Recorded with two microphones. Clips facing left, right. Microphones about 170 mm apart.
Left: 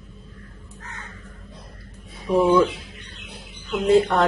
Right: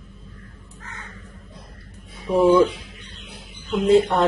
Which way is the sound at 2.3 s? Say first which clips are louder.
Right 2 dB; 30° right (ahead or behind).